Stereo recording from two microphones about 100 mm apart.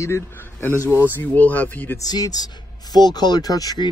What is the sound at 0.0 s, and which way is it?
A man's voice, 25° left (ahead or behind).